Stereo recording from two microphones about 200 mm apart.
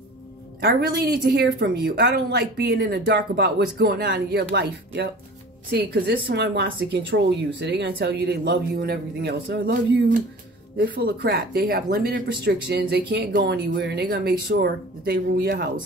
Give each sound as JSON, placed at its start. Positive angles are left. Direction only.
{"t": 0.6, "sound": "a woman's voice", "side_deg": -55}